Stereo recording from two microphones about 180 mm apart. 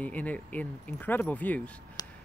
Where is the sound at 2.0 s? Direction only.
20° left (ahead or behind).